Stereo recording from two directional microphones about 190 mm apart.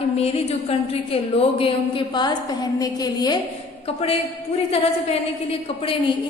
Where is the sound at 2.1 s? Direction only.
20° left (ahead or behind).